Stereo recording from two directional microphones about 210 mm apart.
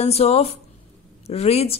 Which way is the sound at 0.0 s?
30° left (ahead or behind).